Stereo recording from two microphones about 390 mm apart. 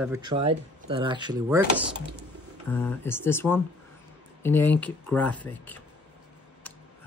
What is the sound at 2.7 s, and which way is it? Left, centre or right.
Speech, centre.